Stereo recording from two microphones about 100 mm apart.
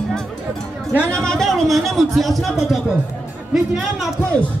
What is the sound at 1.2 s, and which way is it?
Speech, 5° left (ahead or behind).